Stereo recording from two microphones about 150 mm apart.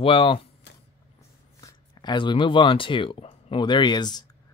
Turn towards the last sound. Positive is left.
turn(degrees=30)  # may be behind; listen again after turning